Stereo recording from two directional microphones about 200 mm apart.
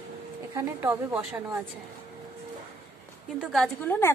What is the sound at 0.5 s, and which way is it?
A woman's voice, 15° right (ahead or behind).